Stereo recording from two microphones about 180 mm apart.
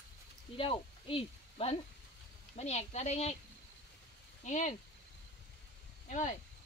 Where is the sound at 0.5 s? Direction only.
30° left (ahead or behind).